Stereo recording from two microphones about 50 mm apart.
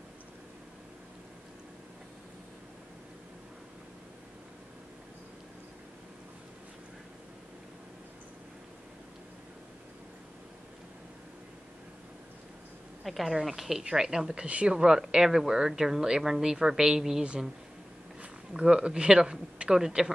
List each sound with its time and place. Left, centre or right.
13.0 s a woman's voice: centre
18.5 s a woman's voice: centre